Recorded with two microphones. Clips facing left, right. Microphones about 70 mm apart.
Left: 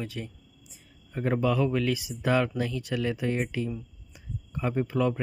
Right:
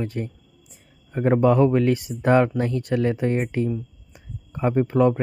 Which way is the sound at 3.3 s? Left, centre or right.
Centre.